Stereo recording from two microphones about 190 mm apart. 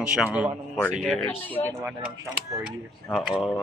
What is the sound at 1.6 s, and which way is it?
Speech, 25° left (ahead or behind).